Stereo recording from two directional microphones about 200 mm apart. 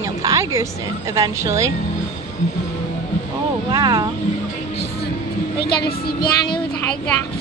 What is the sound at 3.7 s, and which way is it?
Speech, 20° right (ahead or behind).